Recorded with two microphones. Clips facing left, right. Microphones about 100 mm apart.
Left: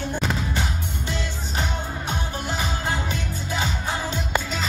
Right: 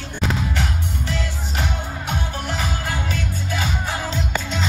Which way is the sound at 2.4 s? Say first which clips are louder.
Right 1 dB; 20° left (ahead or behind).